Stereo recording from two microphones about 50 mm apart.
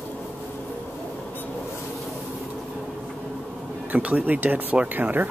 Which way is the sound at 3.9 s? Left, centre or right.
Right.